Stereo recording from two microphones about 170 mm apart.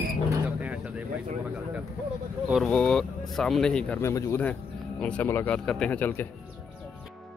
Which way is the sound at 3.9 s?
15° left (ahead or behind).